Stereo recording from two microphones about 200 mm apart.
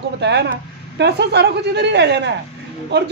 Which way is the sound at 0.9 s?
60° right (ahead or behind).